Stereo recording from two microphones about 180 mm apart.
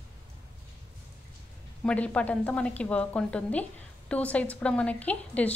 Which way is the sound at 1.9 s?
5° left (ahead or behind).